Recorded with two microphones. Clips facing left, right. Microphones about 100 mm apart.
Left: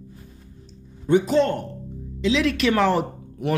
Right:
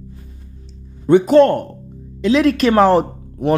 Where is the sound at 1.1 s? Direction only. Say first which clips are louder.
Right 8 dB; 60° right (ahead or behind).